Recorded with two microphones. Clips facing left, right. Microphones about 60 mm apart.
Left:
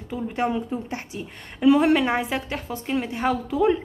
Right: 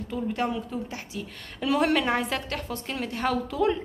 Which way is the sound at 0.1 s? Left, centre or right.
Left.